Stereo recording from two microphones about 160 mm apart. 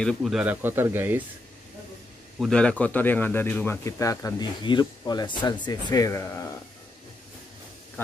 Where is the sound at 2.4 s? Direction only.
5° left (ahead or behind).